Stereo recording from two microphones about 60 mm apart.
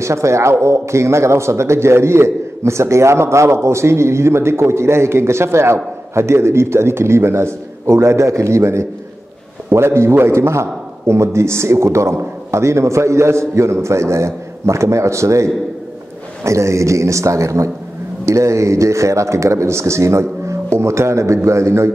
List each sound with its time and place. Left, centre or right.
0.0 s speech: right
9.7 s speech: right